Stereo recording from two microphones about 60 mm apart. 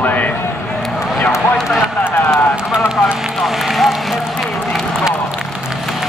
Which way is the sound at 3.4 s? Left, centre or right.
Centre.